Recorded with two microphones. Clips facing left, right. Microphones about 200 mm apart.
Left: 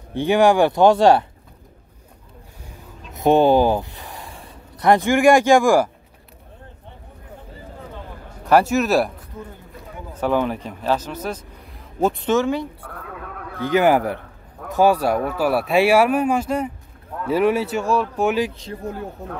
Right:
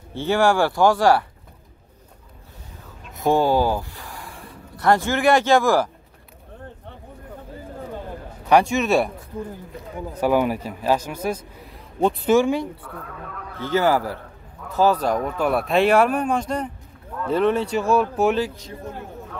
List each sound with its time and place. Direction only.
0.1 s speech: 15° left (ahead or behind)
3.2 s speech: 20° left (ahead or behind)
8.5 s speech: centre (ahead or behind)
10.1 s speech: 10° right (ahead or behind)
13.6 s speech: 15° left (ahead or behind); by 18.3 s centre (ahead or behind)